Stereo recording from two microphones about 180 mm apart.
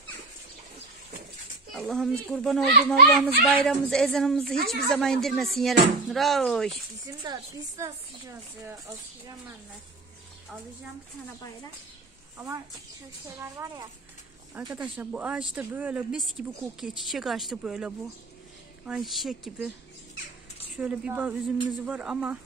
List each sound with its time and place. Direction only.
1.7 s speech: centre (ahead or behind)
7.1 s a woman's voice: 20° right (ahead or behind)
12.4 s a man's voice: 15° right (ahead or behind); by 19.7 s centre (ahead or behind)
20.7 s a man's voice: 5° right (ahead or behind)